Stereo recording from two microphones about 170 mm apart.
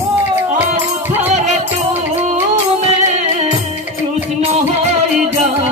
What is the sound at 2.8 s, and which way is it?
Music, 40° right (ahead or behind).